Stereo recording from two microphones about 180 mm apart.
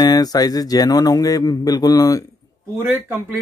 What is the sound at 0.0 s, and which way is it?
Speech, 20° left (ahead or behind).